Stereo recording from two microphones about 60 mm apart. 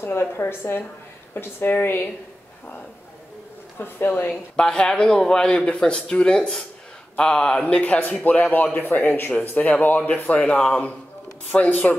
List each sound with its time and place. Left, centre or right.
0.0 s a woman's voice: left
3.7 s a woman's voice: left
4.6 s a man's voice: centre